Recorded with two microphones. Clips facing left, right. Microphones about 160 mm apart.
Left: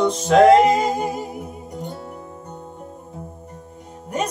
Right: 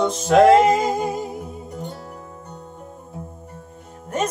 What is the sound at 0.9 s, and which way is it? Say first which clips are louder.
Music: right 1 dB; 10° left (ahead or behind).